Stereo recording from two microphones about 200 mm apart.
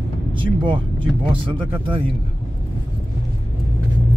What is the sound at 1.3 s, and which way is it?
Speech, 25° right (ahead or behind).